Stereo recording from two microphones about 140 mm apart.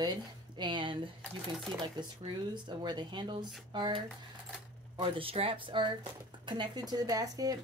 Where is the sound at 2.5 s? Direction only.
35° right (ahead or behind).